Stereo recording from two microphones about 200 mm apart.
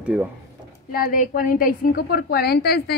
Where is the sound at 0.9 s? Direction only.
45° left (ahead or behind).